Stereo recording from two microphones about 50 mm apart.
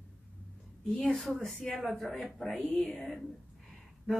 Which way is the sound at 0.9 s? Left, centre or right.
Centre.